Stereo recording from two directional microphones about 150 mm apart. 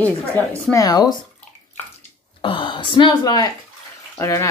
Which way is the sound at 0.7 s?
25° left (ahead or behind).